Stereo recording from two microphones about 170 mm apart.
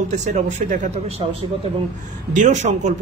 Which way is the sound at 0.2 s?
45° right (ahead or behind).